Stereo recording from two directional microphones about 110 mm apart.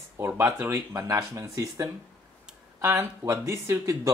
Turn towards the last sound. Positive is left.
turn(degrees=-30)  # may be behind; listen again after turning